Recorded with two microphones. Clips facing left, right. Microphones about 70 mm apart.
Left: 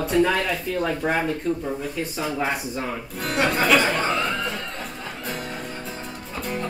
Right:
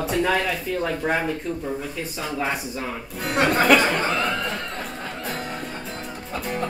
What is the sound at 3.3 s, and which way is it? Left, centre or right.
Music, right.